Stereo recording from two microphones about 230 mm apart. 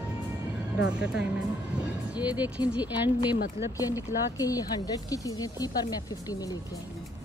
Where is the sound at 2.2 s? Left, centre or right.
Centre.